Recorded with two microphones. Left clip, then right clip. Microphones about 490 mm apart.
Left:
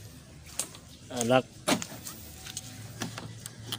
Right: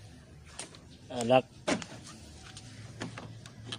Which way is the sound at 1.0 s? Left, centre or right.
Right.